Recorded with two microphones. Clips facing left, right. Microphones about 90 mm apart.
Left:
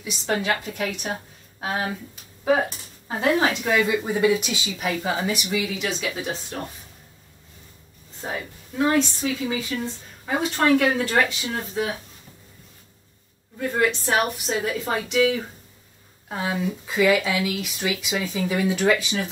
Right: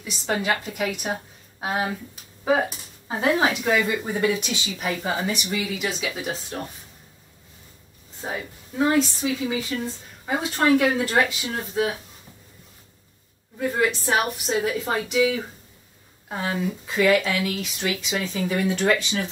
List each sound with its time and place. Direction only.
0.0 s a woman's voice: centre (ahead or behind)
8.2 s speech: 5° right (ahead or behind)
13.6 s a woman's voice: 5° right (ahead or behind)
16.3 s speech: centre (ahead or behind)